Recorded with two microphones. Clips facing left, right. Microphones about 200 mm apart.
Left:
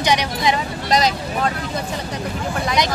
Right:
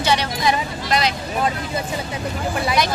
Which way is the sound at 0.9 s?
40° left (ahead or behind).